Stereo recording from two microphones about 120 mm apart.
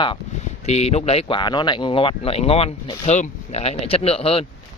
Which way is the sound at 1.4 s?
40° left (ahead or behind).